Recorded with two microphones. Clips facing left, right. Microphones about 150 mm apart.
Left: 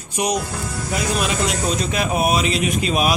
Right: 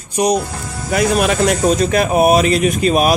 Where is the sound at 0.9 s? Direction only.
60° right (ahead or behind).